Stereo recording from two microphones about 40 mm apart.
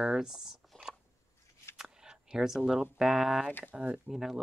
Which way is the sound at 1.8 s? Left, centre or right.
Centre.